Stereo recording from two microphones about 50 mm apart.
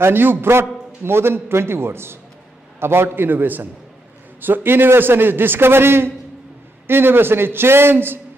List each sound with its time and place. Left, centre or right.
0.0 s a man's voice: right